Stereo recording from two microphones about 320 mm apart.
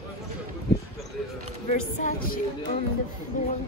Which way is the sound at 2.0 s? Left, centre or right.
Left.